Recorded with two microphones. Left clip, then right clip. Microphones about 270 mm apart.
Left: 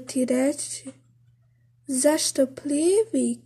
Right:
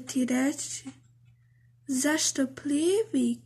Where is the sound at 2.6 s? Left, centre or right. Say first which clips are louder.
Left 4 dB; left.